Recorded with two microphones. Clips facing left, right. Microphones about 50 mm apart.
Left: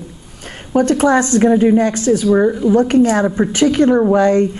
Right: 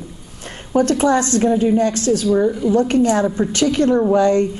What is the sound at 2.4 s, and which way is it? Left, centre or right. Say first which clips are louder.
A woman's voice: left 3 dB; left.